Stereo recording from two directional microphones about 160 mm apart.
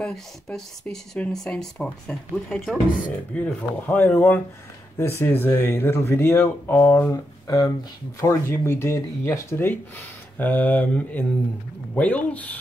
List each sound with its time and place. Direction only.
0.0 s speech: 5° left (ahead or behind)